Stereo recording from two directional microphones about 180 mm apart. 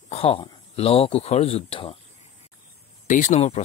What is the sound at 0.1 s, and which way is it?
Speech, 30° left (ahead or behind).